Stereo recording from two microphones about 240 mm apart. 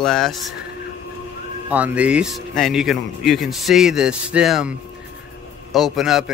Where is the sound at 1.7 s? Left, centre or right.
Centre.